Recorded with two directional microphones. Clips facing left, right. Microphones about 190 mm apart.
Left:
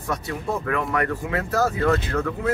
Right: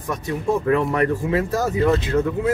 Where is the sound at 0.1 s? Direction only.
25° right (ahead or behind).